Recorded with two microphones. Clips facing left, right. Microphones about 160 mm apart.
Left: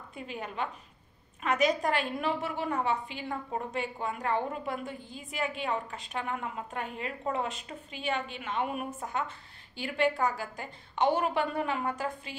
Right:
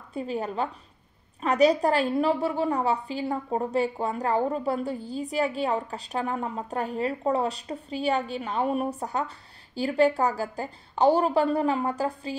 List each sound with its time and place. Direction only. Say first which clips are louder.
0.1 s a woman's voice: right 10 dB; 35° right (ahead or behind)